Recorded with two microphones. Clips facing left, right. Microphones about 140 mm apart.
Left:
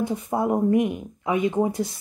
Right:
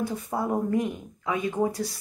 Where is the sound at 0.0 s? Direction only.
20° left (ahead or behind).